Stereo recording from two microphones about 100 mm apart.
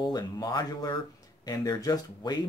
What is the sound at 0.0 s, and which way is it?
Speech, 45° left (ahead or behind).